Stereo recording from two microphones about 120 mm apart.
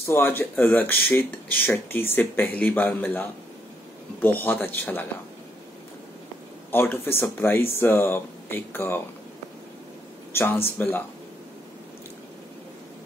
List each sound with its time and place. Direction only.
0.0 s speech: 20° left (ahead or behind)
6.7 s speech: 20° left (ahead or behind)
10.3 s speech: 20° left (ahead or behind)